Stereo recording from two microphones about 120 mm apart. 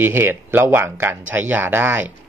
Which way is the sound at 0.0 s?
15° right (ahead or behind).